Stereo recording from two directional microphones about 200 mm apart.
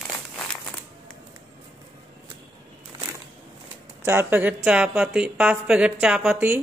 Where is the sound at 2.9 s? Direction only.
25° right (ahead or behind).